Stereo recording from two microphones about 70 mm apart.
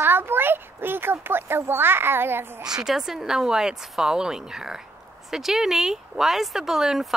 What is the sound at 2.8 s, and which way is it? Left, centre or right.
Speech, centre.